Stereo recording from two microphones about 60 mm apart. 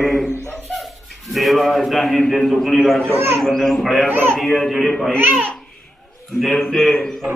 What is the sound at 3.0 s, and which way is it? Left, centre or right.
Speech, right.